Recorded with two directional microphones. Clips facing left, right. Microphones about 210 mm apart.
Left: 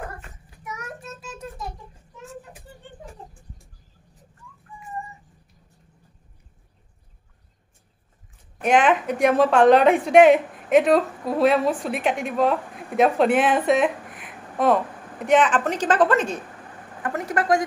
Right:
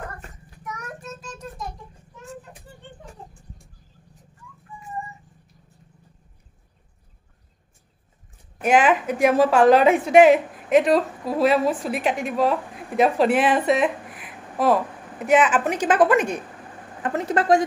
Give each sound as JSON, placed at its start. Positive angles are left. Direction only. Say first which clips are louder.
{"t": 0.7, "sound": "child singing", "louder": "right 1 dB", "side_deg": 5}
{"t": 8.5, "sound": "a woman's voice", "louder": "even", "side_deg": 0}
{"t": 17.0, "sound": "speech", "louder": "right 2 dB", "side_deg": -25}